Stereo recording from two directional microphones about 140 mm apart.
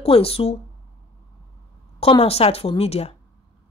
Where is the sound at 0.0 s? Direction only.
45° left (ahead or behind).